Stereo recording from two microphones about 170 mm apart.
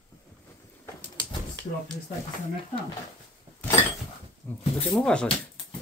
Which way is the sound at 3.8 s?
40° left (ahead or behind).